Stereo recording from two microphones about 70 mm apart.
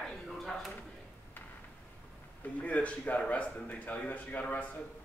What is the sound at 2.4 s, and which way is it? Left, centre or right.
Speech, left.